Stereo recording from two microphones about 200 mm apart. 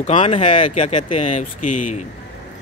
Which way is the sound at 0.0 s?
35° left (ahead or behind).